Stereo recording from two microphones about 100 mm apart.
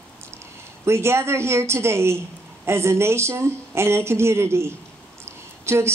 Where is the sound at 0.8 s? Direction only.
25° right (ahead or behind).